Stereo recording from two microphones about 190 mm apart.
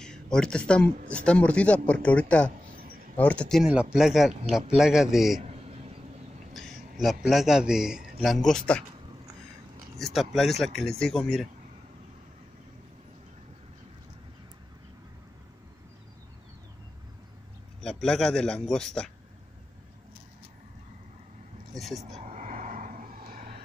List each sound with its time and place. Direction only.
0.0 s speech: 5° left (ahead or behind)
6.5 s a man's voice: centre (ahead or behind)
9.9 s speech: centre (ahead or behind)
17.8 s speech: 5° left (ahead or behind)
21.7 s speech: centre (ahead or behind)
22.1 s a sound: 40° right (ahead or behind)